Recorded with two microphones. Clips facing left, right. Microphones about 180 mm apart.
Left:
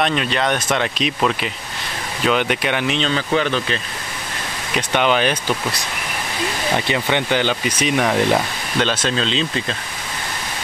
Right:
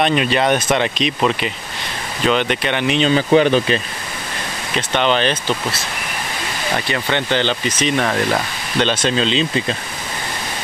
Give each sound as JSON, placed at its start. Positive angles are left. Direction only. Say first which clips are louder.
{"t": 0.0, "sound": "speech", "louder": "right 3 dB", "side_deg": -10}
{"t": 2.2, "sound": "speech", "louder": "right 1 dB", "side_deg": 10}
{"t": 3.0, "sound": "speech", "louder": "right 6 dB", "side_deg": -15}
{"t": 4.7, "sound": "speech", "louder": "even", "side_deg": 10}
{"t": 6.9, "sound": "speech", "louder": "right 1 dB", "side_deg": 15}